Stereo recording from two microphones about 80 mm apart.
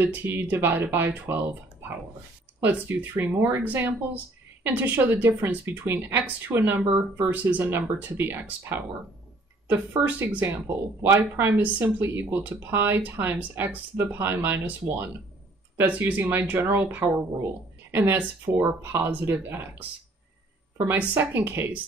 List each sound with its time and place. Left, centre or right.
0.0 s a woman's voice: right
2.6 s a woman's voice: right
15.8 s a woman's voice: centre
21.1 s a woman's voice: right